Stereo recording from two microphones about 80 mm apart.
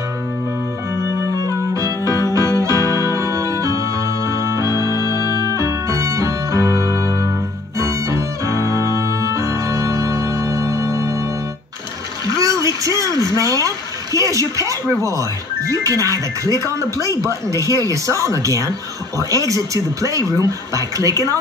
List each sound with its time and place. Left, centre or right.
1.0 s music: right
5.2 s music: left
5.6 s music: right
12.4 s a sound: right
16.5 s speech: right